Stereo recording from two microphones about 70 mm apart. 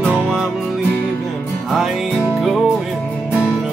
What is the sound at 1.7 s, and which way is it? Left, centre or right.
Music, centre.